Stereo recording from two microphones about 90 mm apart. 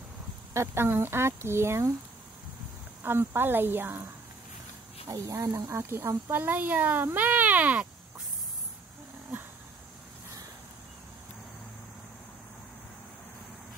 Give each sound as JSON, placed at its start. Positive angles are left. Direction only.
{"t": 0.5, "sound": "speech", "side_deg": -30}
{"t": 3.0, "sound": "speech", "side_deg": -25}
{"t": 5.1, "sound": "speech", "side_deg": -40}